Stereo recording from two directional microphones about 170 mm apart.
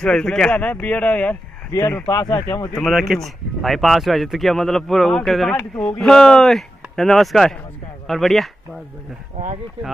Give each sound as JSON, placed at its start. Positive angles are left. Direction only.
{"t": 0.0, "sound": "speech", "side_deg": 5}
{"t": 2.7, "sound": "speech", "side_deg": 0}